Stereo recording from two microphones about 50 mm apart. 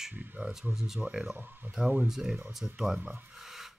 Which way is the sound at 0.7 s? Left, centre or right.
Centre.